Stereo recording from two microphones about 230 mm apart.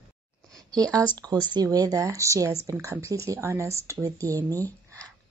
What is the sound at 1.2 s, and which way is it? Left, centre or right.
Speech, centre.